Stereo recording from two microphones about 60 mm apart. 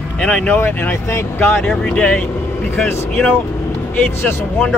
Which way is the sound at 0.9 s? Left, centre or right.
Left.